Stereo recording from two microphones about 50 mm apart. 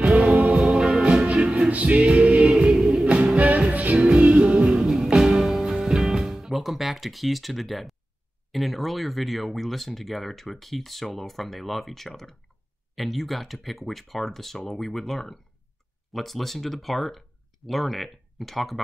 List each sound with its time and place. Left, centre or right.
0.0 s music: right
0.6 s music: centre
1.0 s music: right
3.3 s music: right
4.7 s music: centre
8.5 s speech: centre